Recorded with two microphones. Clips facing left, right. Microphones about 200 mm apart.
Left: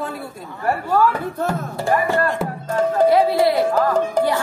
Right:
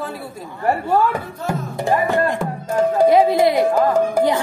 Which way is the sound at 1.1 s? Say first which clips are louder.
Left 2 dB; 15° right (ahead or behind).